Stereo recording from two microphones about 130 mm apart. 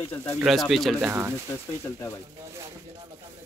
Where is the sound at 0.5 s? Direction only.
Centre (ahead or behind).